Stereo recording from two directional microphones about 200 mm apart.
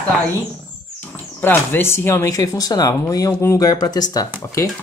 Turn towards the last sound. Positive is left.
turn(degrees=15)  # may be behind; listen again after turning